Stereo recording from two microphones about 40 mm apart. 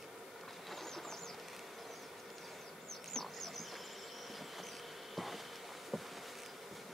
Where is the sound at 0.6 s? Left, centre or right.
Centre.